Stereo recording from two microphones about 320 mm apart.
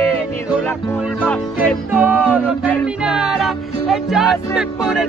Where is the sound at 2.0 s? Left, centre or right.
Centre.